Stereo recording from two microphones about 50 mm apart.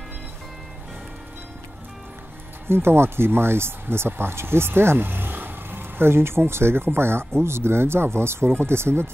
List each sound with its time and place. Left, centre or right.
2.7 s speech: right